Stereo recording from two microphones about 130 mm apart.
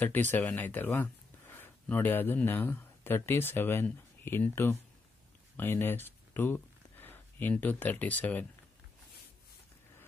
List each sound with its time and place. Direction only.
0.0 s speech: 15° left (ahead or behind)